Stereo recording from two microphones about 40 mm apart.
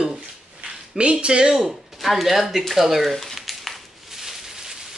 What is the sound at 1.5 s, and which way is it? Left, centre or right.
Speech, centre.